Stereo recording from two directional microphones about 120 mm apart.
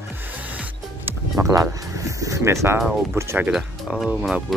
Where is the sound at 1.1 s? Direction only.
25° right (ahead or behind).